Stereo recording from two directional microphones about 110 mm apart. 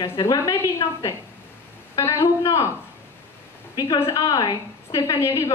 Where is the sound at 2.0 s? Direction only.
25° left (ahead or behind).